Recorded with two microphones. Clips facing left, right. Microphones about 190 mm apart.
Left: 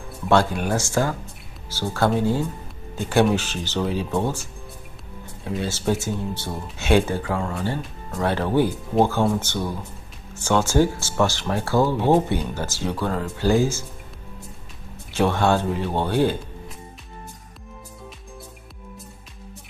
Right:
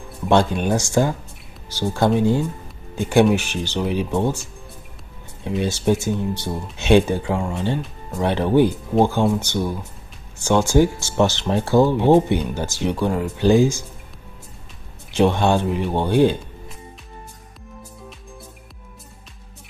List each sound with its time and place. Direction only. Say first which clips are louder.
0.3 s speech: right 2 dB; 20° right (ahead or behind)
5.4 s speech: right 4 dB; 20° right (ahead or behind)
15.1 s speech: right 3 dB; 20° right (ahead or behind)